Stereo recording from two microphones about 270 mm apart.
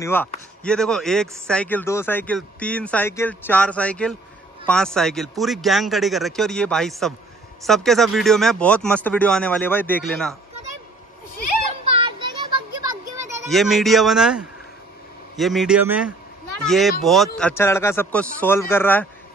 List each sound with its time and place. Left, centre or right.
0.0 s speech: centre
11.8 s children playing: centre
13.5 s speech: centre